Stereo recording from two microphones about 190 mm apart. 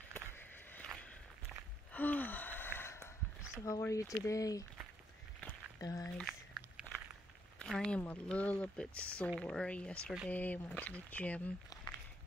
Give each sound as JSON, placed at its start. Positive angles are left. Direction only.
{"t": 0.1, "sound": "vehicle", "side_deg": 10}
{"t": 2.0, "sound": "a sound", "side_deg": 10}
{"t": 3.6, "sound": "speech", "side_deg": 15}
{"t": 5.8, "sound": "speech", "side_deg": 20}
{"t": 6.1, "sound": "walk", "side_deg": 0}
{"t": 7.5, "sound": "speech", "side_deg": 5}